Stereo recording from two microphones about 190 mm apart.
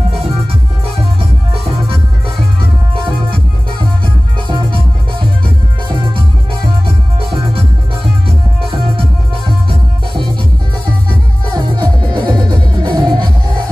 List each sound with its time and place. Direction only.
1.6 s music: 30° right (ahead or behind)
4.5 s music: 25° right (ahead or behind)
7.2 s music: 30° right (ahead or behind)
9.5 s music: 25° right (ahead or behind)
11.5 s music: 20° right (ahead or behind)